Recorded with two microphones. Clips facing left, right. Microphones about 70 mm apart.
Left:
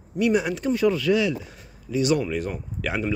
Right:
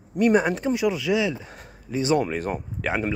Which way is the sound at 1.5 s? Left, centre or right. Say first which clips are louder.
Left 1 dB; right.